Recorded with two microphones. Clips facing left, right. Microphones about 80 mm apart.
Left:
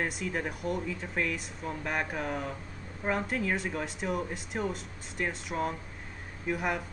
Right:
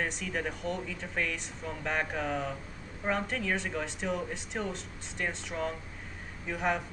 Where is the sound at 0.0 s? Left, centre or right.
Centre.